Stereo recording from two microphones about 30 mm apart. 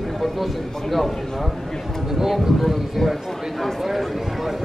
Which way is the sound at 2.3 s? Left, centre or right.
Centre.